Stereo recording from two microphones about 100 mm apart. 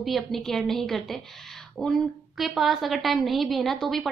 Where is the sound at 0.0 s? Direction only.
Centre (ahead or behind).